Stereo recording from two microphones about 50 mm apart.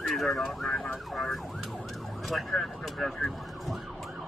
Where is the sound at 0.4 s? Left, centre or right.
Centre.